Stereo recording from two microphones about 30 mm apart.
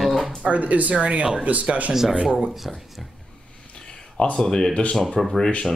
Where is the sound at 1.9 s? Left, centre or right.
Centre.